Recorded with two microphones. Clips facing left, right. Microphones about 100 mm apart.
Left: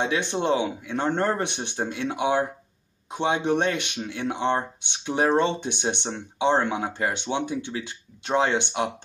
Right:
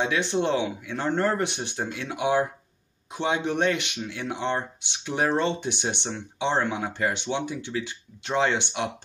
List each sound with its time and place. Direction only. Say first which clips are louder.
0.0 s speech: even; 20° left (ahead or behind)